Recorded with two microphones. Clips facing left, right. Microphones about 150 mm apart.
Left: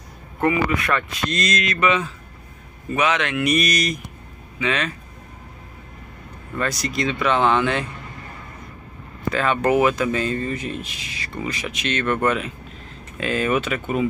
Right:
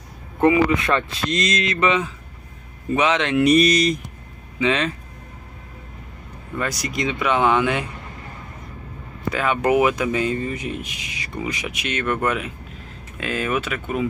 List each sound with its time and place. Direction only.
0.4 s speech: 20° right (ahead or behind)
6.6 s speech: 10° right (ahead or behind)
9.3 s speech: 10° right (ahead or behind)